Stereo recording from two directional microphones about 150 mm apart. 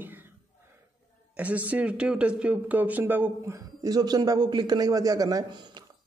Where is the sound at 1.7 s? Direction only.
10° right (ahead or behind).